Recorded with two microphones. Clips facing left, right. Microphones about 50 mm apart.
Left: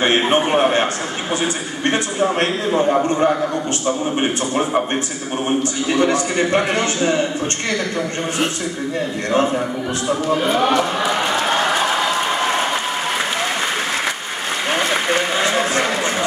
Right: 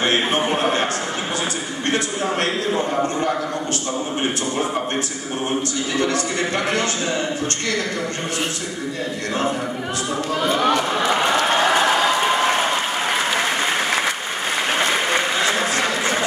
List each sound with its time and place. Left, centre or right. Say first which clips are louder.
0.0 s a man's voice: left 4 dB; left
1.9 s a sound: left 4 dB; left
4.2 s a man's voice: left 3 dB; left
10.0 s a man's voice: left 4 dB; left
10.7 s speech: left 2 dB; centre
15.3 s a sound: left 2 dB; left